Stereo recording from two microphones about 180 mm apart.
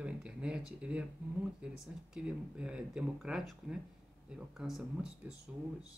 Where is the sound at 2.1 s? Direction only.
5° right (ahead or behind).